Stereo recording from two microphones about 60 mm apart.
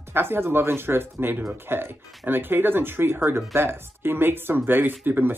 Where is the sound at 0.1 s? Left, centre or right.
Right.